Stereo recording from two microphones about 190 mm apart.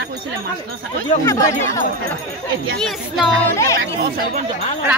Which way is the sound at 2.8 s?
Centre (ahead or behind).